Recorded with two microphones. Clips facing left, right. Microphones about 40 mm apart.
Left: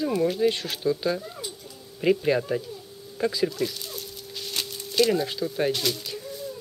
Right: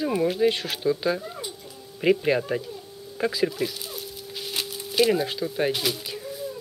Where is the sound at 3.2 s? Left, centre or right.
Centre.